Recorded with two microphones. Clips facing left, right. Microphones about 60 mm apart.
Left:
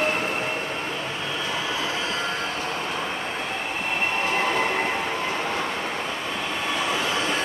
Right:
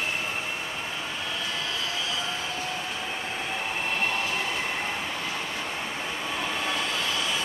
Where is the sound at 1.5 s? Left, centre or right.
Left.